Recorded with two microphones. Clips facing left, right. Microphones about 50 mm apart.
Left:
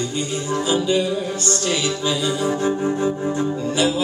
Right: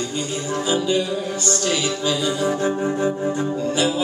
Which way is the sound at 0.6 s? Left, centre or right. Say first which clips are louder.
Even; centre.